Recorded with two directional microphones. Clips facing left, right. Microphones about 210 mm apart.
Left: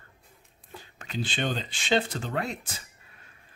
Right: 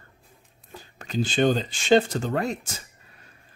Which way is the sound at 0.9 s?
40° right (ahead or behind).